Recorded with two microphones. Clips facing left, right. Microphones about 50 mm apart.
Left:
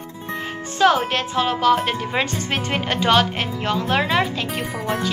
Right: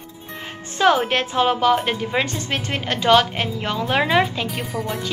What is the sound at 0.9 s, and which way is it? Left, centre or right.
A woman's voice, centre.